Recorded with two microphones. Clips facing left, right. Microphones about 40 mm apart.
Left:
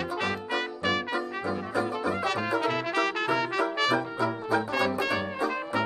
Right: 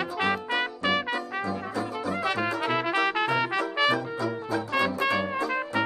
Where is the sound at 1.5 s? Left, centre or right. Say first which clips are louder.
Left 2 dB; centre.